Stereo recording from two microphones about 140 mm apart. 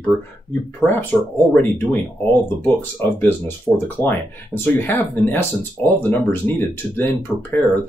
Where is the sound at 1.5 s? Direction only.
15° left (ahead or behind).